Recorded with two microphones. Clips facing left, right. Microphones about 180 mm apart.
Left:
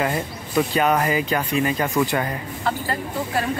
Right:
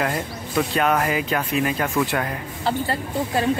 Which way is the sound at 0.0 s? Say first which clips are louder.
Left 1 dB; centre (ahead or behind).